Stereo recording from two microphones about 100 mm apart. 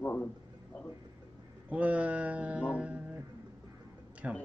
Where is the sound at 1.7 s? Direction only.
15° right (ahead or behind).